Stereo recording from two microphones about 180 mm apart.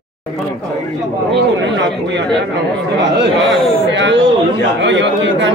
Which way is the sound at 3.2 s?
90° right.